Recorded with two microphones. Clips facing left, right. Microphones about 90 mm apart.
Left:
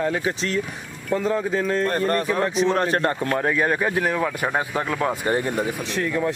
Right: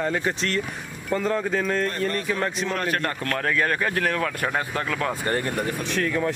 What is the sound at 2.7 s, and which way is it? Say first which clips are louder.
Speech: left 5 dB; 30° left (ahead or behind).